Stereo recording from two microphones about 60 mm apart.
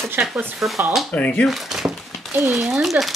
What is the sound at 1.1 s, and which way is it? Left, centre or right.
Speech, left.